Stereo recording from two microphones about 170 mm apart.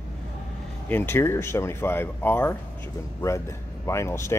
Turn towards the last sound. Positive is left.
turn(degrees=15)  # may be behind; listen again after turning